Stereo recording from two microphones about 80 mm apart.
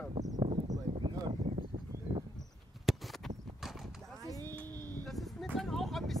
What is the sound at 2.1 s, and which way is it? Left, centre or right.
Insect, right.